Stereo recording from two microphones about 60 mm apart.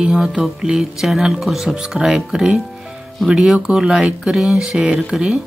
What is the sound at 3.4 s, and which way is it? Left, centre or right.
Speech, centre.